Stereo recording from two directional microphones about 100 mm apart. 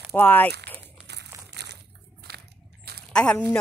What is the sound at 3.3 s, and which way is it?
Speech, 15° left (ahead or behind).